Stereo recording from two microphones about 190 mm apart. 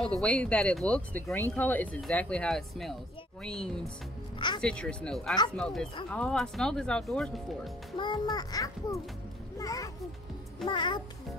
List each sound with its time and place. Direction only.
0.0 s speech: 5° left (ahead or behind)
8.0 s a child's voice: 20° left (ahead or behind)